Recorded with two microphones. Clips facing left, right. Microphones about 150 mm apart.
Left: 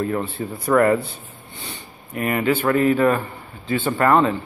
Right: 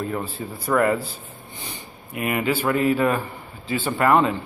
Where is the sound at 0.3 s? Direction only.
Centre (ahead or behind).